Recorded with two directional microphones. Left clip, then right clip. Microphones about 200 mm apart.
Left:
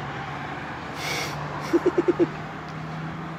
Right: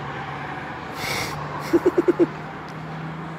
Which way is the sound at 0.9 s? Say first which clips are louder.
Right 2 dB; centre (ahead or behind).